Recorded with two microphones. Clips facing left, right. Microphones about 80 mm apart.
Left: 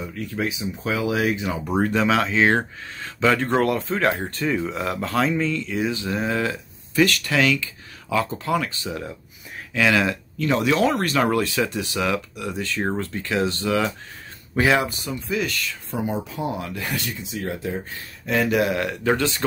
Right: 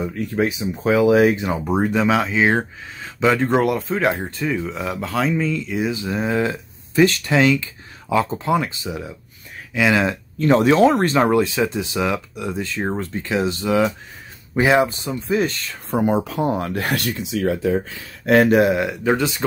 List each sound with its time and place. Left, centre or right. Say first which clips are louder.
0.0 s speech: right 6 dB; right
1.7 s speech: right 2 dB; centre
8.8 s speech: right 1 dB; centre
9.8 s speech: right 2 dB; right
15.7 s speech: right 7 dB; right
16.4 s speech: right 6 dB; right
18.2 s speech: right 8 dB; right
18.5 s speech: right 6 dB; right
18.8 s speech: right 2 dB; centre